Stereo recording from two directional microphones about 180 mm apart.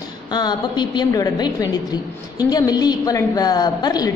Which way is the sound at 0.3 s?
25° left (ahead or behind).